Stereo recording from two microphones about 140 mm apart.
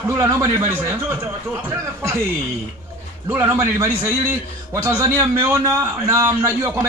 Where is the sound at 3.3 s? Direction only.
20° right (ahead or behind).